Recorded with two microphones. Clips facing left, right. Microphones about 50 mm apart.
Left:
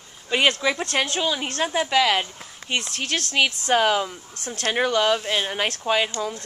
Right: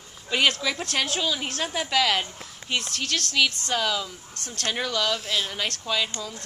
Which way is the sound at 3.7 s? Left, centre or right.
Left.